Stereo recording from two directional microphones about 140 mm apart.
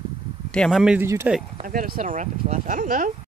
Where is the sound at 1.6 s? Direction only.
90° right; by 3.1 s 70° right (ahead or behind).